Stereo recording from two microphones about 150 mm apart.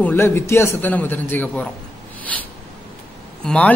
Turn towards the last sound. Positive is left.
turn(degrees=5)  # may be behind; listen again after turning